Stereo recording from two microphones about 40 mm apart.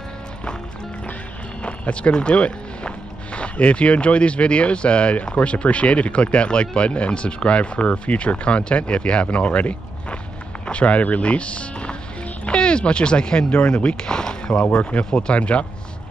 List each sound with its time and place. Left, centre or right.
1.6 s speech: left
14.6 s speech: left